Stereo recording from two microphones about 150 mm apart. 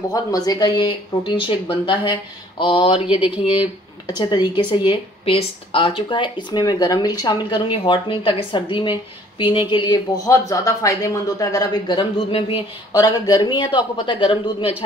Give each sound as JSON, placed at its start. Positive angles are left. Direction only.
{"t": 0.1, "sound": "speech", "side_deg": 25}
{"t": 4.1, "sound": "speech", "side_deg": 30}
{"t": 12.9, "sound": "speech", "side_deg": 25}